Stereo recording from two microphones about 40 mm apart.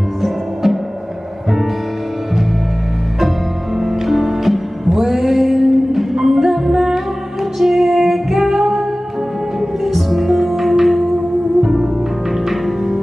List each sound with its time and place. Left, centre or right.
0.2 s music: centre
3.8 s music: centre
9.8 s music: centre
11.6 s music: centre
12.4 s music: centre